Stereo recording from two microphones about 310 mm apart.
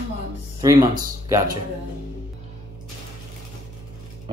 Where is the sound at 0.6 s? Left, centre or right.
Centre.